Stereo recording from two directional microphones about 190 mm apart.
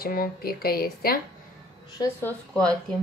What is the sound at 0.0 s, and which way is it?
A woman's voice, 50° left (ahead or behind).